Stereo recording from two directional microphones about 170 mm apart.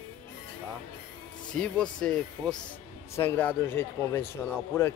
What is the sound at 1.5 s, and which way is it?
Speech, 5° left (ahead or behind).